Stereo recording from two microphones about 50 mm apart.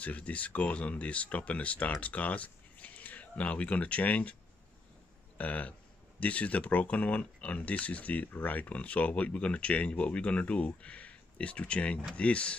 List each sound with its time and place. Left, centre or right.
0.0 s speech: left
5.4 s speech: left